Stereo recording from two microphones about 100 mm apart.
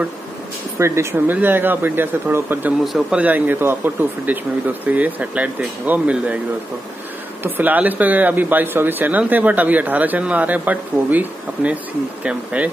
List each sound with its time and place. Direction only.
0.7 s speech: 25° right (ahead or behind)
2.8 s speech: 5° right (ahead or behind)
3.2 s speech: 15° right (ahead or behind)
7.4 s speech: 20° right (ahead or behind)